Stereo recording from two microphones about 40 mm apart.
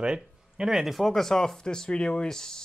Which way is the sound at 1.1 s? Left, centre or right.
Centre.